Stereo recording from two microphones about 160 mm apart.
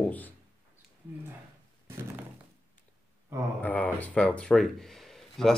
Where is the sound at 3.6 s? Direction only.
10° left (ahead or behind).